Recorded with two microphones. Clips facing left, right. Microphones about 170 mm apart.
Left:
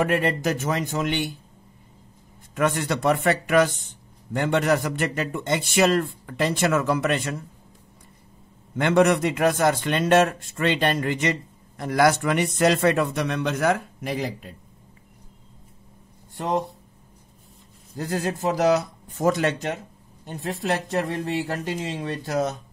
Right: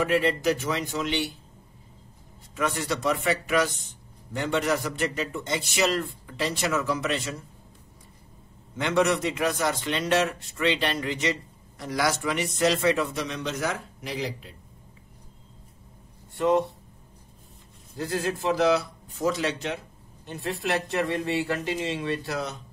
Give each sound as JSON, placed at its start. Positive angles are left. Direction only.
{"t": 0.0, "sound": "a man's voice", "side_deg": 50}
{"t": 2.5, "sound": "speech", "side_deg": 55}
{"t": 8.7, "sound": "a man's voice", "side_deg": 50}
{"t": 16.3, "sound": "speech", "side_deg": 40}
{"t": 17.9, "sound": "a man's voice", "side_deg": 45}